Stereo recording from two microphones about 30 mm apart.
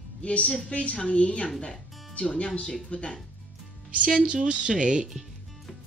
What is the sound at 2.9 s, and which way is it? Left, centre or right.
Speech, left.